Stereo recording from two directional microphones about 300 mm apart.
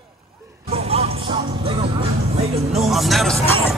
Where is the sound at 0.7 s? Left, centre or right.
Centre.